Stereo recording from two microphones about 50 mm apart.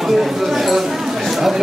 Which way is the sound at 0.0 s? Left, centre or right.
Centre.